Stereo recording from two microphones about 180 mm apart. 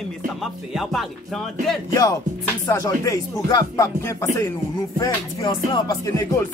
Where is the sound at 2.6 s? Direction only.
20° left (ahead or behind).